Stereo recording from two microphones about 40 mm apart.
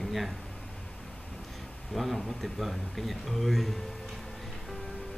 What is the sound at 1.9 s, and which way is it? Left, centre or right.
Speech, centre.